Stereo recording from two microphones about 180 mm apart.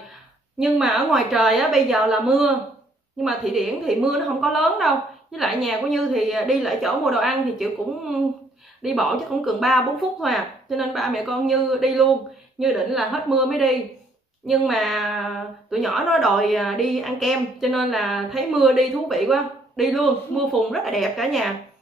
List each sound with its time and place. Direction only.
0.6 s a woman's voice: centre (ahead or behind)